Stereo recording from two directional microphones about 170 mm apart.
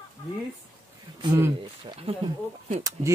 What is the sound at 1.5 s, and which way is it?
Speech, 30° right (ahead or behind).